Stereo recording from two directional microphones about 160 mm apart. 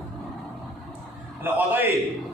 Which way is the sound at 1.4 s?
10° right (ahead or behind).